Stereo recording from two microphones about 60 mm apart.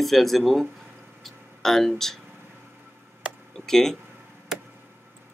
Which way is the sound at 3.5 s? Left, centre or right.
Centre.